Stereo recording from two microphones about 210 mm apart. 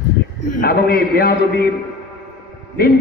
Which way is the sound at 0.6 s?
45° left (ahead or behind).